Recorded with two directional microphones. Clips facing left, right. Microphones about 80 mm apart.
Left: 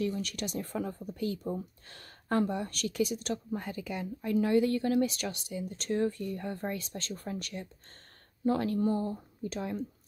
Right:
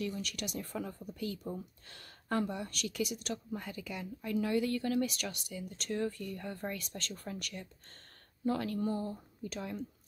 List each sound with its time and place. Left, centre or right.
0.0 s speech: left